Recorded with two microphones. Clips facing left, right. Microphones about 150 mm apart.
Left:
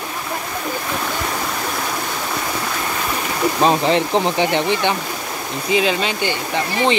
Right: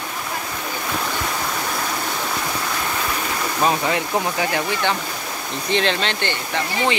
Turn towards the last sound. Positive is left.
turn(degrees=15)  # may be behind; listen again after turning